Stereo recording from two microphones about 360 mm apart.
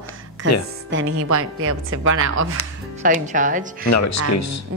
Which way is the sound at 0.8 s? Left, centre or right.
Right.